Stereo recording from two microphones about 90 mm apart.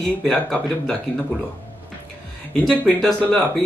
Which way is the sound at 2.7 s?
10° left (ahead or behind).